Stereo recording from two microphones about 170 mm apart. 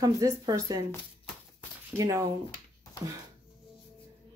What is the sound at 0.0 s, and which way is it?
Speech, 20° right (ahead or behind).